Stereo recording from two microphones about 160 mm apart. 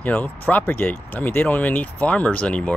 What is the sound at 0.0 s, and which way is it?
Speech, 10° left (ahead or behind).